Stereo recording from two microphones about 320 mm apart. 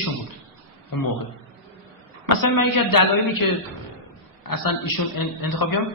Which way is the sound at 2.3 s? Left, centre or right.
Left.